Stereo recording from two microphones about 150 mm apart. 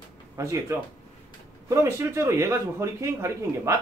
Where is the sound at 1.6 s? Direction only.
20° right (ahead or behind).